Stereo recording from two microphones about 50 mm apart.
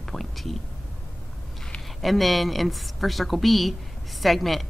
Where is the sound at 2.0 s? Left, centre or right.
Centre.